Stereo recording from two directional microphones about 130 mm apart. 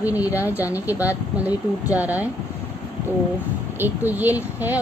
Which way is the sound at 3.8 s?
15° right (ahead or behind).